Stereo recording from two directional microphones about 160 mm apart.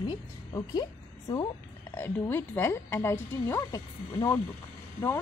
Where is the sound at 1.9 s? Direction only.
15° left (ahead or behind).